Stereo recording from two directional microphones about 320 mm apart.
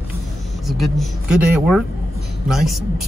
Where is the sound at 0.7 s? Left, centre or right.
Centre.